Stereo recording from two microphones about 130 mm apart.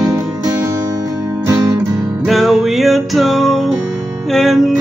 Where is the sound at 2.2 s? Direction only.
Centre (ahead or behind).